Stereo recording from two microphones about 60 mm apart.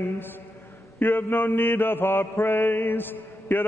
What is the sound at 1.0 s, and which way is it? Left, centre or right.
Mantra, left.